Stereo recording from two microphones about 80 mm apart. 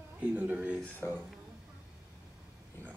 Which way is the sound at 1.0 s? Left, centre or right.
Left.